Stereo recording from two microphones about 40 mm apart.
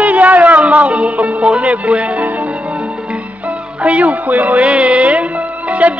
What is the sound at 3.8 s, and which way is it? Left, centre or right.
Music, right.